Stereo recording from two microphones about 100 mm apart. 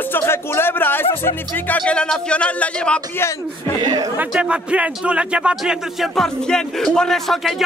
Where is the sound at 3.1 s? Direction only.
30° left (ahead or behind).